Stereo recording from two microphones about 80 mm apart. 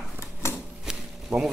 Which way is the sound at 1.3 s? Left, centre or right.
Centre.